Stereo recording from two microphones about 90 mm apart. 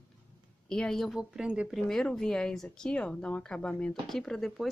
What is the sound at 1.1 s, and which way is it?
Speech, 5° right (ahead or behind).